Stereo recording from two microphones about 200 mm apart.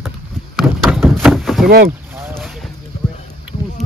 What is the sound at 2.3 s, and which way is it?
Boat, centre (ahead or behind).